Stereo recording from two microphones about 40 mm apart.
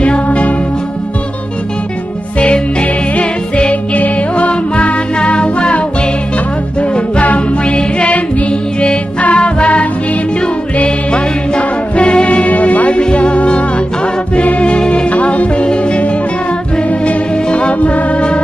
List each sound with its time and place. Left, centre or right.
0.0 s music: left
2.3 s music: left
11.1 s music: left